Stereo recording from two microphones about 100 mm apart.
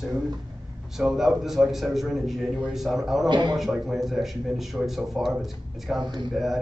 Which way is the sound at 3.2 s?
50° right (ahead or behind).